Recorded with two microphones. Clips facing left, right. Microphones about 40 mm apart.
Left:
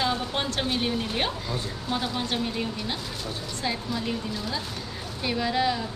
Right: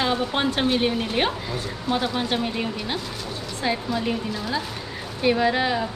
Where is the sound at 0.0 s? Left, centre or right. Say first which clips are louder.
Right 4 dB; centre.